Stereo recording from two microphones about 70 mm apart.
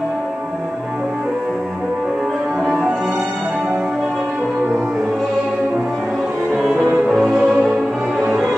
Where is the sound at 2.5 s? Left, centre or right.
Centre.